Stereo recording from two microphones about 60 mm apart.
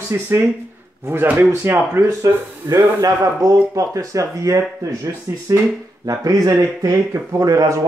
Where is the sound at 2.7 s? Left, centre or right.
Right.